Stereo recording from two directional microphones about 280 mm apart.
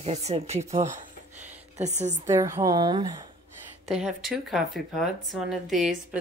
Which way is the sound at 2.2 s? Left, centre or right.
Centre.